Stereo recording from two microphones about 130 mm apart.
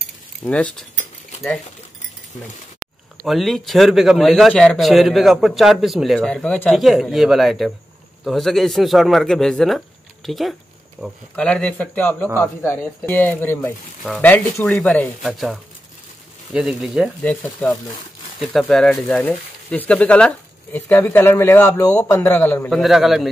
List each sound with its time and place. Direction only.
0.4 s speech: 10° left (ahead or behind)
3.3 s a man's voice: centre (ahead or behind)
11.3 s speech: 10° left (ahead or behind)
15.2 s a man's voice: centre (ahead or behind)
17.2 s speech: 10° left (ahead or behind)
17.6 s speech: 30° left (ahead or behind)
18.4 s a man's voice: centre (ahead or behind)
19.2 s speech: 10° left (ahead or behind)
22.7 s a man's voice: centre (ahead or behind)